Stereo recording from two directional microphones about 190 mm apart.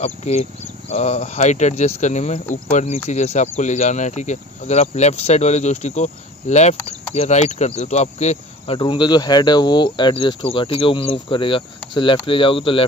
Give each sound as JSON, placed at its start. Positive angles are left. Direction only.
{"t": 0.0, "sound": "speech", "side_deg": 35}
{"t": 7.2, "sound": "cricket", "side_deg": 35}